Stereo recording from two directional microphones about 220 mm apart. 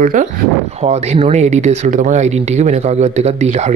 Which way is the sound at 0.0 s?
35° right (ahead or behind).